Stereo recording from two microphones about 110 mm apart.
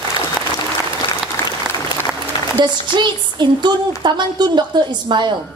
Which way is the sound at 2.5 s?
45° right (ahead or behind).